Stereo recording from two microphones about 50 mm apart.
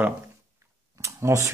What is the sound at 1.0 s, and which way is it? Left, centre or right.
Speech, right.